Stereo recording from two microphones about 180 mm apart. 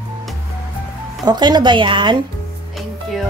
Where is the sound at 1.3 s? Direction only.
25° right (ahead or behind).